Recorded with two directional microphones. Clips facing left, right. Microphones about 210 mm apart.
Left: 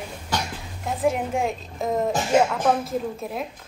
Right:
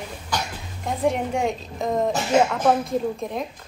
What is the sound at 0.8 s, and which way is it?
A woman's voice, centre (ahead or behind).